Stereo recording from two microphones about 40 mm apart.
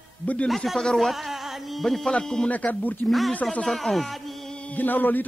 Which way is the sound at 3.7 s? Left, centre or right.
Centre.